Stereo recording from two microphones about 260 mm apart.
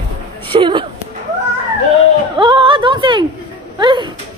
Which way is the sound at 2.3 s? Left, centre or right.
Centre.